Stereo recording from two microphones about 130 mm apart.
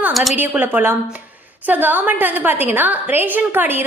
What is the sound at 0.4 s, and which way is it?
A woman's voice, 15° right (ahead or behind).